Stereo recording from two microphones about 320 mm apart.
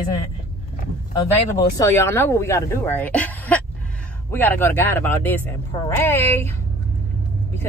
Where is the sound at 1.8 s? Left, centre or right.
Centre.